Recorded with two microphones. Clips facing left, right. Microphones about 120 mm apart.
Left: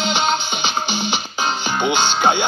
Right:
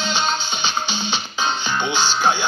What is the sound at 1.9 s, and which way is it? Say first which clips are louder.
Speech: left 3 dB; 55° left (ahead or behind).